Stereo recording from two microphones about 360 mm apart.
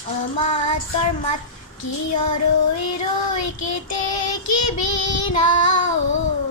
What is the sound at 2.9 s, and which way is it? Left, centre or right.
Child singing, left.